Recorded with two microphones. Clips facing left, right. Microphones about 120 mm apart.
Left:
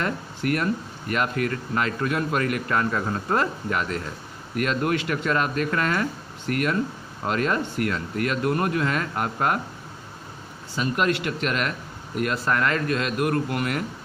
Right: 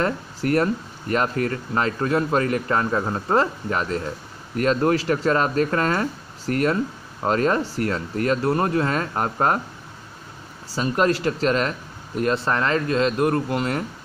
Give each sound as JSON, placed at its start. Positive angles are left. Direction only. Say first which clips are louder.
{"t": 0.0, "sound": "speech", "louder": "right 3 dB", "side_deg": -35}
{"t": 10.7, "sound": "speech", "louder": "right 3 dB", "side_deg": -35}